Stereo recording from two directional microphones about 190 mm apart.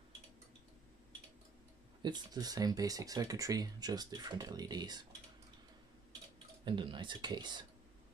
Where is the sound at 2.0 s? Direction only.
20° right (ahead or behind).